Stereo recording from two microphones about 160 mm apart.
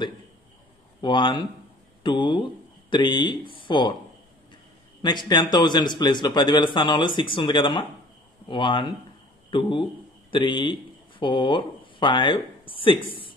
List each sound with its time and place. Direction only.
1.0 s a man's voice: 30° left (ahead or behind)
5.0 s a man's voice: 30° left (ahead or behind)